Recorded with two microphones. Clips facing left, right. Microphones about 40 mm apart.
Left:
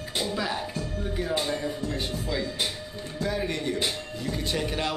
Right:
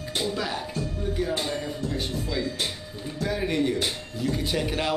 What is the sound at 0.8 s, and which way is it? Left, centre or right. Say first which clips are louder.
Music: right 2 dB; centre.